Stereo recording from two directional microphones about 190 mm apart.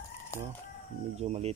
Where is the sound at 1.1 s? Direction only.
35° right (ahead or behind).